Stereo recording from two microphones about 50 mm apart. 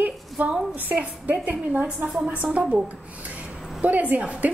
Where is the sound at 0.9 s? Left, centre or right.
Right.